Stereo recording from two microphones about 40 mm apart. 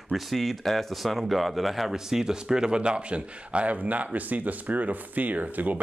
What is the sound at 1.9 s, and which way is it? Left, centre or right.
Speech, centre.